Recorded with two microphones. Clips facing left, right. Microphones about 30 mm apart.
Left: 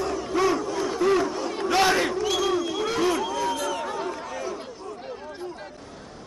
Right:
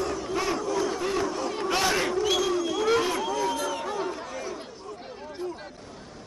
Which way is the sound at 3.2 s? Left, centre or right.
Centre.